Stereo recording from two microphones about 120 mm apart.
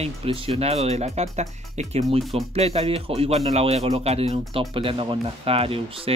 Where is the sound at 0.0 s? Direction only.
55° right (ahead or behind).